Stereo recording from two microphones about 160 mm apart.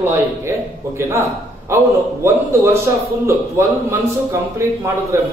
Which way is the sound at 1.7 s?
15° right (ahead or behind).